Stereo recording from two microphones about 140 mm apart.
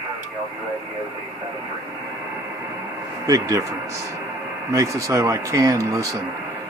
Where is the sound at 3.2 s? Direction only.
25° right (ahead or behind).